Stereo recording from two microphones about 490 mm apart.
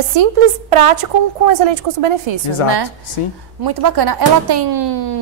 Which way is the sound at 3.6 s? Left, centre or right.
Right.